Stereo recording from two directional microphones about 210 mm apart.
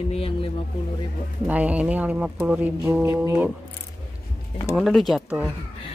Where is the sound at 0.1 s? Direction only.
25° left (ahead or behind).